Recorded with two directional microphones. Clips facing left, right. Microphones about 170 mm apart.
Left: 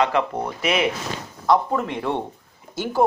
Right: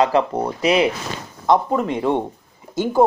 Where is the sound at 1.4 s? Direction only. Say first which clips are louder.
Right 2 dB; 20° right (ahead or behind).